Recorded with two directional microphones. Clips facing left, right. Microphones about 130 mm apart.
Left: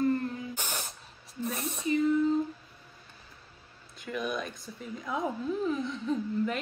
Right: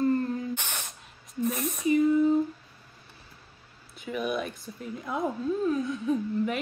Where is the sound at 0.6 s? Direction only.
35° left (ahead or behind).